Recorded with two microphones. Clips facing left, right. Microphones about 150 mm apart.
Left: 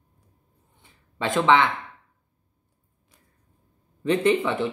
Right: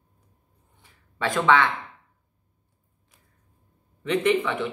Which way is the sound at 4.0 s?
30° left (ahead or behind).